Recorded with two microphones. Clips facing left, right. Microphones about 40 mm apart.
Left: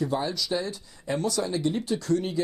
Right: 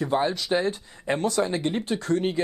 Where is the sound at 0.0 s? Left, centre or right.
Right.